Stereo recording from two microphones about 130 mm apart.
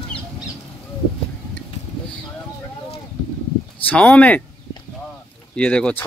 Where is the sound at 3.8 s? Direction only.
10° left (ahead or behind).